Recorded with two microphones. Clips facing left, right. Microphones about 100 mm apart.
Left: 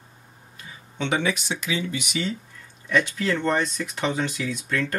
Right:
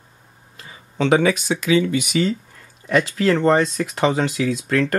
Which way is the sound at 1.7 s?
80° right.